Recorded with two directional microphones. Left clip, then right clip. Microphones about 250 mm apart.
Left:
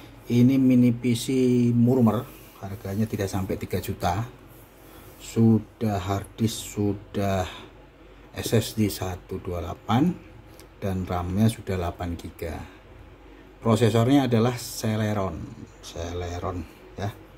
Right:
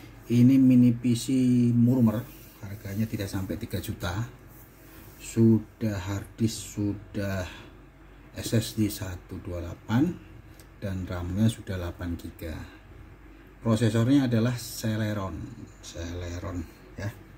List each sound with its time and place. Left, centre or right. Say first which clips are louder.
0.3 s speech: even; left
5.3 s speech: left 1 dB; left
13.7 s speech: left 5 dB; left